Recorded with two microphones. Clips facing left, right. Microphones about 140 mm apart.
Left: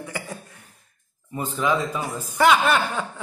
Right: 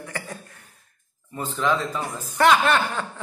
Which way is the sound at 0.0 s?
10° left (ahead or behind).